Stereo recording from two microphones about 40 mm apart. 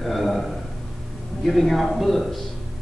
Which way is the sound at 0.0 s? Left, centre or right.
Centre.